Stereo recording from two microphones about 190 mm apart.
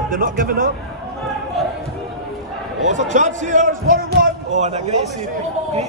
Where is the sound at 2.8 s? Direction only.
40° right (ahead or behind).